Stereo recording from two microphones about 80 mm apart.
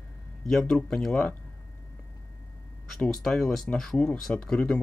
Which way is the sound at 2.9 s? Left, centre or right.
Centre.